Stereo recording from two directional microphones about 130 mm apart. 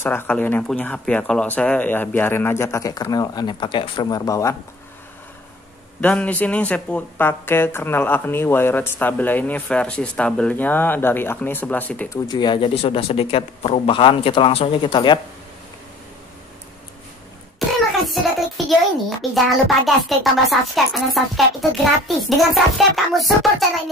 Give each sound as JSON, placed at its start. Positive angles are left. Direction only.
{"t": 0.0, "sound": "speech", "side_deg": 15}
{"t": 5.9, "sound": "speech", "side_deg": 10}
{"t": 12.1, "sound": "speech", "side_deg": 35}
{"t": 17.6, "sound": "cough", "side_deg": 0}
{"t": 18.7, "sound": "a child's voice", "side_deg": 0}